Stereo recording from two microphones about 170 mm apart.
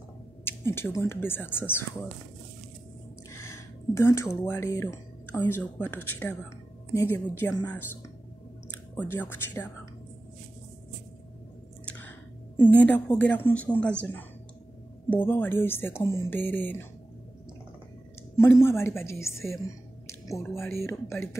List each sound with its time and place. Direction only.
0.5 s speech: 15° left (ahead or behind)
3.3 s speech: 15° left (ahead or behind)
8.9 s speech: 10° left (ahead or behind)
11.8 s chewing: 5° left (ahead or behind)
12.6 s speech: 10° left (ahead or behind)
15.0 s speech: 10° left (ahead or behind)
18.3 s speech: 15° left (ahead or behind)